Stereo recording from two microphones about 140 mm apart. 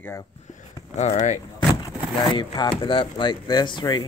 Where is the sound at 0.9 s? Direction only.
60° left (ahead or behind).